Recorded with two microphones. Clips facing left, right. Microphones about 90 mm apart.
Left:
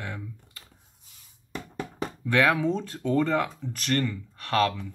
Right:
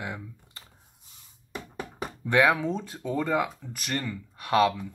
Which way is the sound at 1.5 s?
10° right (ahead or behind).